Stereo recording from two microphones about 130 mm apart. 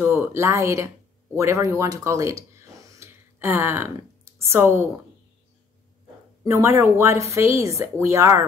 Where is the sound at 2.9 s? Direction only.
20° right (ahead or behind).